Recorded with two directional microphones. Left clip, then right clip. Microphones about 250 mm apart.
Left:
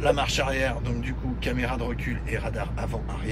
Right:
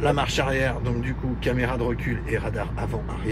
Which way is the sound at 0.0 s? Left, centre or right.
Centre.